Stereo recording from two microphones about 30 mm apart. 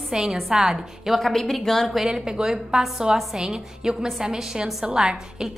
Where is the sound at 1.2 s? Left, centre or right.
Centre.